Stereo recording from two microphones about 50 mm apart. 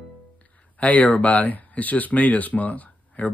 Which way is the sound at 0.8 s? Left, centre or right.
Left.